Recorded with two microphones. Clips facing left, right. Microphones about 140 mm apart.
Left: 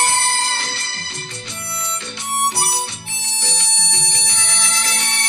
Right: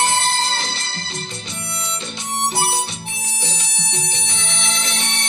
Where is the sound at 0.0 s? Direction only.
20° right (ahead or behind).